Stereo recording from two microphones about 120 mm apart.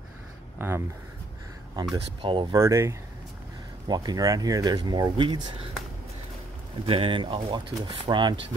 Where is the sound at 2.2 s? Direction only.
45° right (ahead or behind).